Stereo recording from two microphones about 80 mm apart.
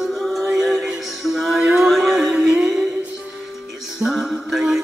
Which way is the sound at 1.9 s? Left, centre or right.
Centre.